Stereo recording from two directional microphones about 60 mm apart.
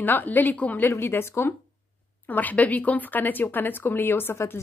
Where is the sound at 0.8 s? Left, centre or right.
Left.